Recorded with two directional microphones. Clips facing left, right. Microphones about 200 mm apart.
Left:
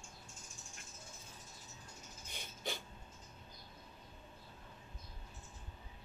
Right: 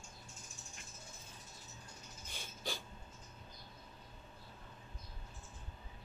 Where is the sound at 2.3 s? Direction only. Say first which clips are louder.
Even; 20° left (ahead or behind).